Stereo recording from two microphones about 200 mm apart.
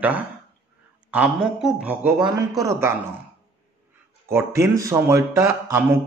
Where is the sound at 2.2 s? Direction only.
15° right (ahead or behind).